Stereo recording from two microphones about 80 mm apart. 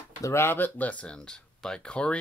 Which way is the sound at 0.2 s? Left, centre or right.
Left.